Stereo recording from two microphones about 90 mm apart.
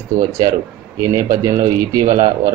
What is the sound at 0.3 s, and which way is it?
Speech, 35° right (ahead or behind).